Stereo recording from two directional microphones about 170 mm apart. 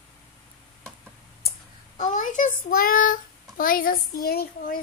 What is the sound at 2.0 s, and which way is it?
Child singing, 45° left (ahead or behind).